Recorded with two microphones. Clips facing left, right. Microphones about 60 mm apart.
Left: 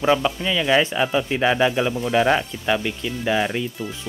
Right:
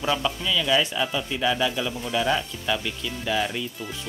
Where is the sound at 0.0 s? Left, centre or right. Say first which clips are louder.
Left 6 dB; left.